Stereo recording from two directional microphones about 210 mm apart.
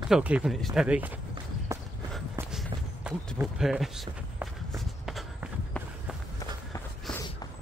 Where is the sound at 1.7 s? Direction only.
15° right (ahead or behind).